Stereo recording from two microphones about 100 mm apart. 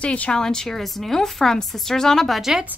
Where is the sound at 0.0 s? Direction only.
15° left (ahead or behind).